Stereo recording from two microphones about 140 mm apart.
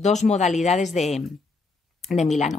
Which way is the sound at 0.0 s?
55° left (ahead or behind).